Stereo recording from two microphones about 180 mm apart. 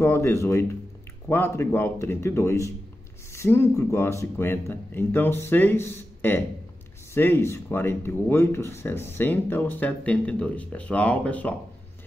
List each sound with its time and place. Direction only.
0.0 s speech: 15° left (ahead or behind)